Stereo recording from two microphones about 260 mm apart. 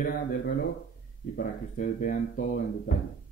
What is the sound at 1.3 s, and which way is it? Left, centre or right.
Speech, left.